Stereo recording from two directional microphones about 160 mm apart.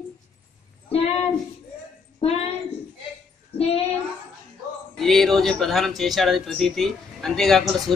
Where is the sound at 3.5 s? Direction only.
35° left (ahead or behind).